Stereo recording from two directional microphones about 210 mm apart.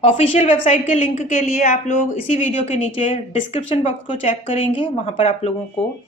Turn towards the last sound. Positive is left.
turn(degrees=30)  # may be behind; listen again after turning